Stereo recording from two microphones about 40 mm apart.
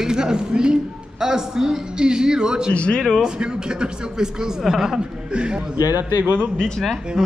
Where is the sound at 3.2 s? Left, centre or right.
Centre.